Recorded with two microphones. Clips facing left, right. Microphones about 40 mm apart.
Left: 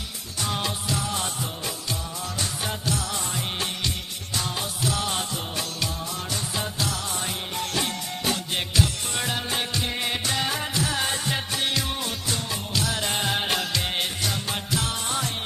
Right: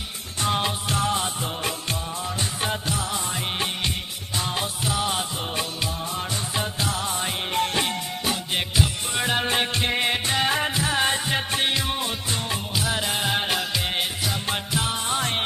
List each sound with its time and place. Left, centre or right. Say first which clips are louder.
0.4 s music: right 4 dB; right
0.8 s music: right 4 dB; right
2.6 s music: right 3 dB; right
8.5 s music: right 1 dB; centre
9.3 s music: right 7 dB; right; by 13.0 s centre
13.0 s music: right 1 dB; centre
14.5 s music: right 2 dB; right